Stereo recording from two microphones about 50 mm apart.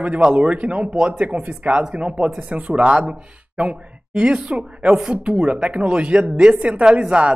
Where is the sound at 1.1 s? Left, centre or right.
Right.